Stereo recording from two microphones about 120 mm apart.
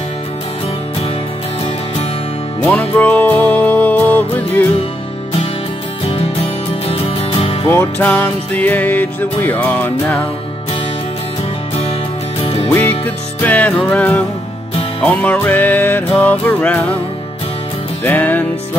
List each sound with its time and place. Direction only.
2.6 s music: 10° left (ahead or behind)
6.9 s music: 50° left (ahead or behind)
7.6 s music: 15° left (ahead or behind)
12.4 s music: 55° left (ahead or behind)
12.7 s music: 20° left (ahead or behind)
18.0 s music: 15° left (ahead or behind)